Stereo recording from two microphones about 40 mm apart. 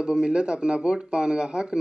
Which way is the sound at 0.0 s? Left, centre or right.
Right.